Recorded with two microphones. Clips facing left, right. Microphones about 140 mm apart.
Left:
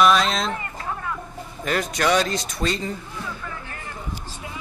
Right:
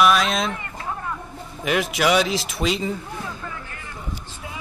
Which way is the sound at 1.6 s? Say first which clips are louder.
Right 2 dB; 5° right (ahead or behind).